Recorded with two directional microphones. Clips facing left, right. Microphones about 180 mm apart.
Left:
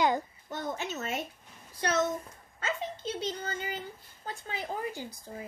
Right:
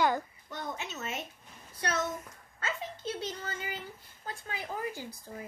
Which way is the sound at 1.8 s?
25° left (ahead or behind).